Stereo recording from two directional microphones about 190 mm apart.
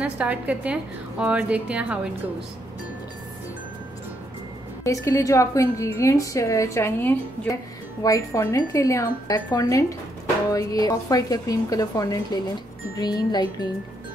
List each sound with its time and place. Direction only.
0.0 s a woman's voice: 5° right (ahead or behind)
4.8 s a woman's voice: 15° left (ahead or behind)